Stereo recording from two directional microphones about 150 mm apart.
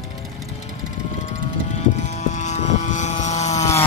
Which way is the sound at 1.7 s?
50° left (ahead or behind).